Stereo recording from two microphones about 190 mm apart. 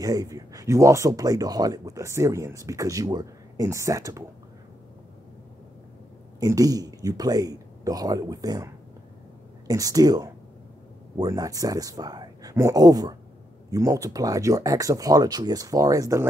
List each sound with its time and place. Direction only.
0.0 s speech: 20° right (ahead or behind)
6.4 s speech: 20° right (ahead or behind)